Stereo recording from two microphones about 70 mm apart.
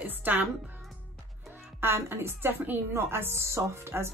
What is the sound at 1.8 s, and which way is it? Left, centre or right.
A woman's voice, right.